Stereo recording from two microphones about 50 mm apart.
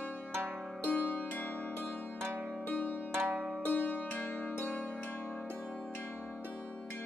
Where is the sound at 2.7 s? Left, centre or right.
Left.